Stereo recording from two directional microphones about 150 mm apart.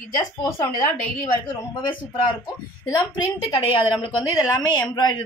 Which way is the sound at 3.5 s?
35° left (ahead or behind).